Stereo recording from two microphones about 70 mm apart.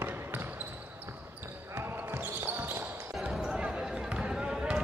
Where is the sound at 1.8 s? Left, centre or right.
Right.